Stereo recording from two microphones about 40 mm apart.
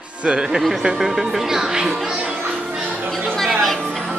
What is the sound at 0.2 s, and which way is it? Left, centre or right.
Speech, right.